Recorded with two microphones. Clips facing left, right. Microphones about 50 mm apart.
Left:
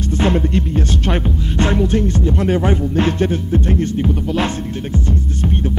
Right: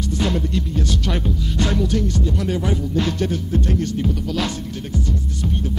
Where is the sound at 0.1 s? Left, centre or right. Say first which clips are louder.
Left 6 dB; left.